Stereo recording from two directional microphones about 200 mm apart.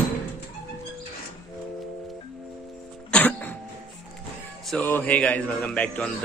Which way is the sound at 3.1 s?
10° left (ahead or behind).